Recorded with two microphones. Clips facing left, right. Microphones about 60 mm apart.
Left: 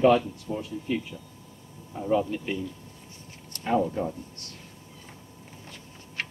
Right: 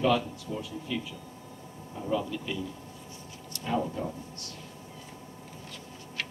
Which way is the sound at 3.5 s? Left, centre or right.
Left.